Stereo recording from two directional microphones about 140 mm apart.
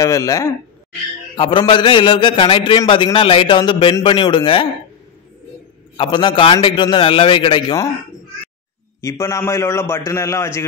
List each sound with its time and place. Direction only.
0.0 s a man's voice: 25° left (ahead or behind)
1.3 s a man's voice: 35° left (ahead or behind)
5.9 s a man's voice: 35° left (ahead or behind)
9.0 s a man's voice: 20° left (ahead or behind)